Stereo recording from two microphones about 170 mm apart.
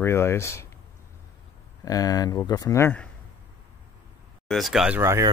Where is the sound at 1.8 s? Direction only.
20° left (ahead or behind).